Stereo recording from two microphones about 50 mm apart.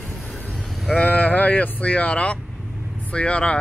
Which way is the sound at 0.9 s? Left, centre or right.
Left.